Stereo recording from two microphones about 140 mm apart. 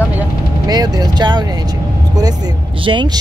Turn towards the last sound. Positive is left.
turn(degrees=-35)  # may be behind; listen again after turning